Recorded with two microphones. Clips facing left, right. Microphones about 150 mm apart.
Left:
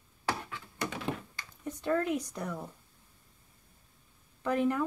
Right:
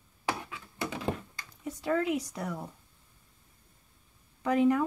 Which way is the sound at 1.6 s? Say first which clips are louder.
Right 1 dB; 5° right (ahead or behind).